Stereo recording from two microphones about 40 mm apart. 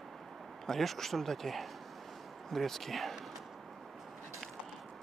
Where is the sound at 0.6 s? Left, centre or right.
Centre.